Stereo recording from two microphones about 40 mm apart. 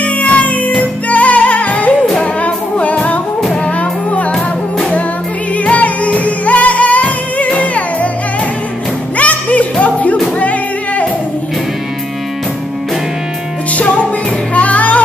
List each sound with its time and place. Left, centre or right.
0.0 s music: left
4.3 s music: left
5.6 s music: left
9.1 s music: left
13.7 s music: left